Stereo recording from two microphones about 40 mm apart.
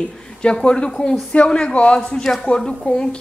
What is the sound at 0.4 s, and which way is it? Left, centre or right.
A woman's voice, left.